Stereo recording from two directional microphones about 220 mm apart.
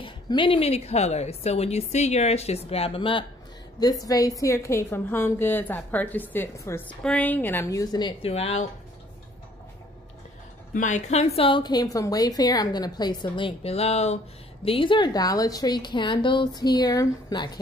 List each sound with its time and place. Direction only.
0.0 s a woman's voice: 20° left (ahead or behind)
10.7 s a woman's voice: 35° left (ahead or behind); by 17.5 s 20° left (ahead or behind)